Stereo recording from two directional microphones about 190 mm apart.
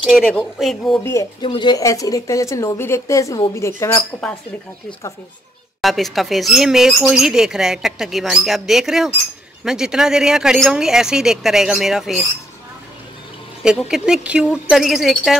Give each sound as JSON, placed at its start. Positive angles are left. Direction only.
{"t": 0.0, "sound": "speech", "side_deg": 0}
{"t": 1.4, "sound": "a woman's voice", "side_deg": 25}
{"t": 5.8, "sound": "speech", "side_deg": 0}
{"t": 13.6, "sound": "speech", "side_deg": -5}